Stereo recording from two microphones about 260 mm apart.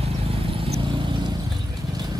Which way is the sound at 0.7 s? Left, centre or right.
Centre.